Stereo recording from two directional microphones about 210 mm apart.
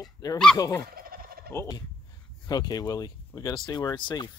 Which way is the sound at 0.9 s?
45° right (ahead or behind).